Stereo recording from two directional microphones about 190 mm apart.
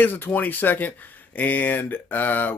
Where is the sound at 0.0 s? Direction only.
10° left (ahead or behind).